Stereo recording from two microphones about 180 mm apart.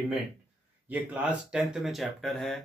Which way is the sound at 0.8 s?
10° right (ahead or behind).